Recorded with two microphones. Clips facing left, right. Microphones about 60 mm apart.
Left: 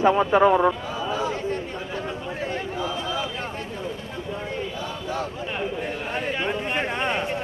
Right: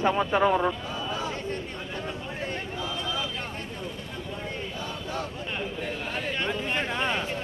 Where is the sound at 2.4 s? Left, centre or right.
Centre.